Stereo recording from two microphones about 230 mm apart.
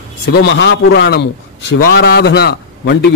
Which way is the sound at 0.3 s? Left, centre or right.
Left.